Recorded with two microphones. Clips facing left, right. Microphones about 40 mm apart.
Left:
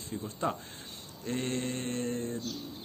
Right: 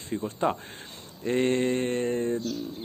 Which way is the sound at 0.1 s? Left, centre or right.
Right.